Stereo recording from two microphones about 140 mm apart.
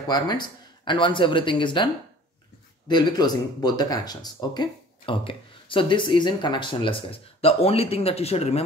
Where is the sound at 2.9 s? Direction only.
30° left (ahead or behind).